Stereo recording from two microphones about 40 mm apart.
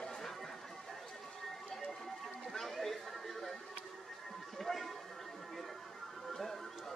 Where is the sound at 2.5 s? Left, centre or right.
Centre.